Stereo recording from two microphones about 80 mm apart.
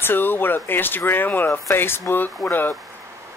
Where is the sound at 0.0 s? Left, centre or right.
Left.